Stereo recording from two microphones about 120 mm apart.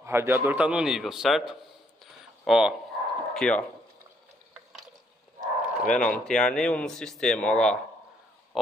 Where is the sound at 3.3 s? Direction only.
5° left (ahead or behind).